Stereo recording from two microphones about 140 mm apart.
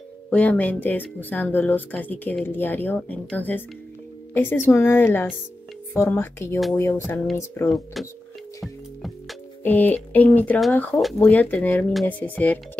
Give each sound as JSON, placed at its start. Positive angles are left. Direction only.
{"t": 0.3, "sound": "speech", "side_deg": 10}
{"t": 7.7, "sound": "speech", "side_deg": 0}
{"t": 9.6, "sound": "speech", "side_deg": 10}